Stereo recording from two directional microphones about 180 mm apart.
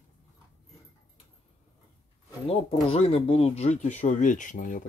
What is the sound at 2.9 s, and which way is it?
Speech, 35° left (ahead or behind).